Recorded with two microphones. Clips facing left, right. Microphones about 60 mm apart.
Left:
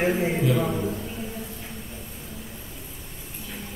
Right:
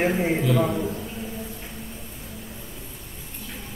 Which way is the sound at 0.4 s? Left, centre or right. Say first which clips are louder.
Right 1 dB; centre.